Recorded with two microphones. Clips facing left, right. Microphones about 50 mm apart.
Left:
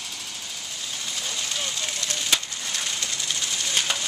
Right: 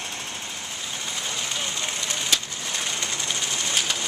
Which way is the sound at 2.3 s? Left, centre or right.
Centre.